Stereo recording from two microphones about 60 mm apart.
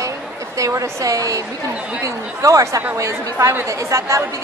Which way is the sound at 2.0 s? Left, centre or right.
Right.